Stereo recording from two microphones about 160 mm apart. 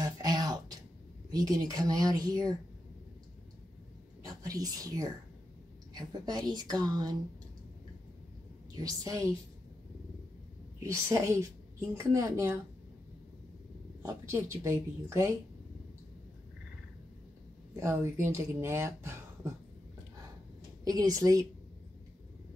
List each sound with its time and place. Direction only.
0.0 s a sound: 25° right (ahead or behind)
1.3 s speech: 25° right (ahead or behind)
4.2 s speech: 20° right (ahead or behind)
8.7 s speech: 25° right (ahead or behind)
10.8 s speech: 20° right (ahead or behind)
14.0 s speech: 15° right (ahead or behind)
17.7 s speech: 15° right (ahead or behind)
20.8 s speech: 20° right (ahead or behind)